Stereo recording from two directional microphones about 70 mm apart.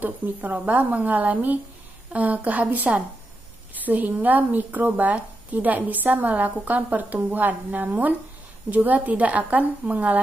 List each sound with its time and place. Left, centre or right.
0.0 s speech: right